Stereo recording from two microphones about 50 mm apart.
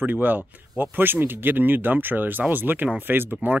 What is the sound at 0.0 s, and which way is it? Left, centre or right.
Speech, right.